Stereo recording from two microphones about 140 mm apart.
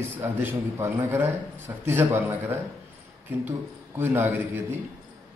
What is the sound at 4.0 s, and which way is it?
Speech, 15° right (ahead or behind).